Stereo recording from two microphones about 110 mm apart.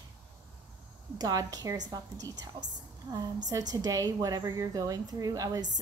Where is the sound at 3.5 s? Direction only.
35° right (ahead or behind).